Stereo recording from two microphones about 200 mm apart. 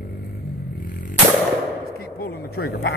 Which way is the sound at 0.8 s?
45° left (ahead or behind).